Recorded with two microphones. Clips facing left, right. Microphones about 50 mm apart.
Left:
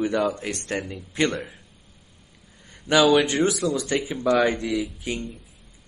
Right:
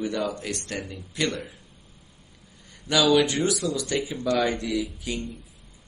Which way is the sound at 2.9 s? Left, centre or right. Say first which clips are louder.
Left 3 dB; left.